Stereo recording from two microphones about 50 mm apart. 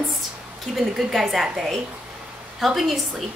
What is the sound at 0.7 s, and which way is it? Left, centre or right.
A woman's voice, centre.